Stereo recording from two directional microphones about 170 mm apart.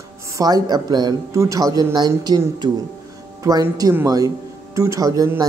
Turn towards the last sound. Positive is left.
turn(degrees=-20)  # may be behind; listen again after turning